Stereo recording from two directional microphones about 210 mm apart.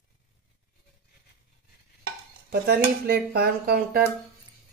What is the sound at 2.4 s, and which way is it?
Cutlery, 45° right (ahead or behind).